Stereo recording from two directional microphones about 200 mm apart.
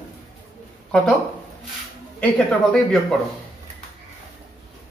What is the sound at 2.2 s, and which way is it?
Speech, 5° left (ahead or behind).